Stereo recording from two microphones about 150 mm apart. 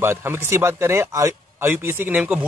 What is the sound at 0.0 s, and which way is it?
Speech, 15° right (ahead or behind).